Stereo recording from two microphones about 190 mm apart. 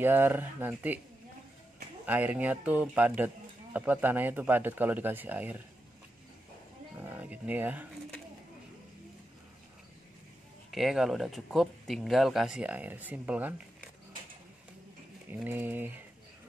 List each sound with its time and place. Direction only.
0.0 s speech: 10° right (ahead or behind)
2.0 s speech: 10° right (ahead or behind)
7.0 s speech: 10° right (ahead or behind)
10.7 s speech: centre (ahead or behind)
15.2 s speech: 10° right (ahead or behind)